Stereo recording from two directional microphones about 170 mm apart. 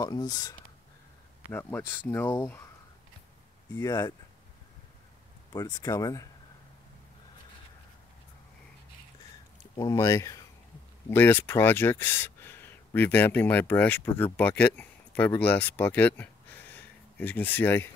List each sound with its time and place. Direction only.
0.0 s speech: 25° left (ahead or behind)
1.5 s speech: 10° left (ahead or behind)
3.7 s speech: 20° left (ahead or behind)
5.8 s speech: 20° left (ahead or behind)
9.8 s speech: 20° left (ahead or behind)